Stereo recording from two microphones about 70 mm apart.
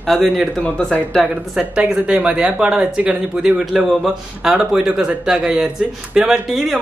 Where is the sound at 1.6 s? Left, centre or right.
Centre.